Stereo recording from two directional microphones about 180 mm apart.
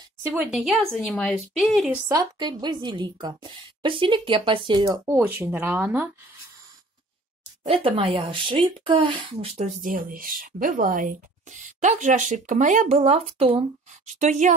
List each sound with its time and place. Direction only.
0.2 s speech: 10° right (ahead or behind)
2.0 s a woman's voice: 25° right (ahead or behind)
5.1 s speech: 10° right (ahead or behind)
7.6 s a woman's voice: 30° right (ahead or behind)
9.8 s speech: 50° right (ahead or behind)